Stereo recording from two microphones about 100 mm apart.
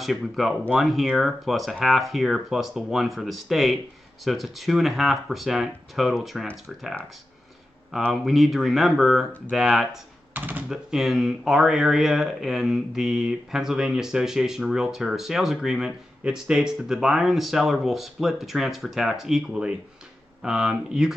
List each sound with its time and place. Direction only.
0.0 s speech: centre (ahead or behind)
8.1 s speech: centre (ahead or behind)
10.3 s speech: 15° right (ahead or behind)
10.7 s speech: 5° right (ahead or behind)